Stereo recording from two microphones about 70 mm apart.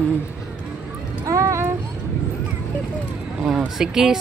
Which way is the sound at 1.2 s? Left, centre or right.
Right.